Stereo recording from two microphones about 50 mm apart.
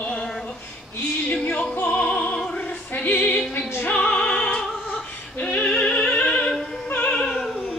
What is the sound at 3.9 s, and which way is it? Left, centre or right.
Opera, centre.